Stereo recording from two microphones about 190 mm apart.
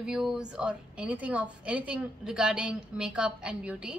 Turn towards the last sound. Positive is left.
turn(degrees=-5)  # may be behind; listen again after turning